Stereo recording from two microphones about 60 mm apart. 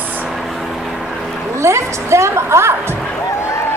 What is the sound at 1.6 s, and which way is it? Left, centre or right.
A woman's voice, right.